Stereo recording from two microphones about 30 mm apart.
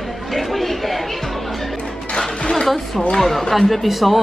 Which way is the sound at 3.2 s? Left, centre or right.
Centre.